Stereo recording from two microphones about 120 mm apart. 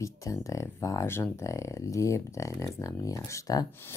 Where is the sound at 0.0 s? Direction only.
25° left (ahead or behind).